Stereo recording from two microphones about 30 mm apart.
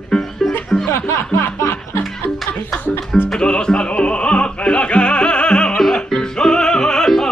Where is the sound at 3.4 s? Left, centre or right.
Left.